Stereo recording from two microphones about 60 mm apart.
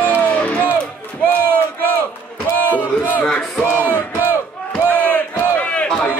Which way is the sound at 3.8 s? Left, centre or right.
Right.